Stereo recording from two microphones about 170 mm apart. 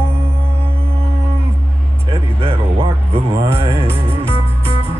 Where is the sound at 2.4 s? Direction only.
30° right (ahead or behind).